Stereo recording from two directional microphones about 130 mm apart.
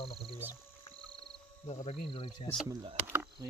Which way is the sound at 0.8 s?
45° left (ahead or behind).